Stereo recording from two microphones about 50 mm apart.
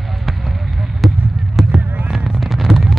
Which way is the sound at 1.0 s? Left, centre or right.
Centre.